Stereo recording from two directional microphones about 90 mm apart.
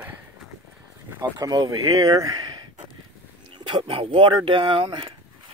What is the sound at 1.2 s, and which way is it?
Speech, 50° right (ahead or behind).